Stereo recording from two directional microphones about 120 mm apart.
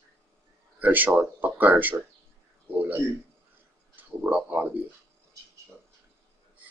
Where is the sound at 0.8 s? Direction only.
15° right (ahead or behind).